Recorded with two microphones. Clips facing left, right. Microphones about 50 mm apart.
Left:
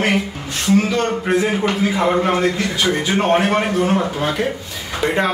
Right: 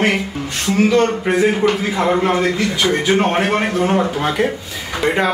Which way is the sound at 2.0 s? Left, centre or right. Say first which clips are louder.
Right 2 dB; centre.